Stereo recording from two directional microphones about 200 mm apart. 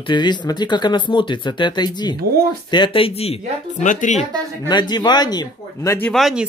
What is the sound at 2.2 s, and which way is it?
Speech, 50° right (ahead or behind).